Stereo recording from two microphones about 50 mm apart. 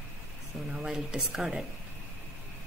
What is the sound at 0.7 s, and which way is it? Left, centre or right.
Speech, centre.